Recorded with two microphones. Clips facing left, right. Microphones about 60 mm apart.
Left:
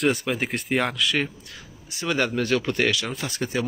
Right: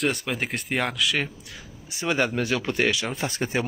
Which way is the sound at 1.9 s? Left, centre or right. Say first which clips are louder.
Right 1 dB; right.